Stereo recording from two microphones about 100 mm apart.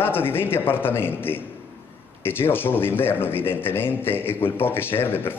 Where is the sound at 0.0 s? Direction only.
20° left (ahead or behind).